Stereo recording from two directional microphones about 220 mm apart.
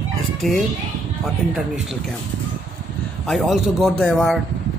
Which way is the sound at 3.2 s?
Centre (ahead or behind).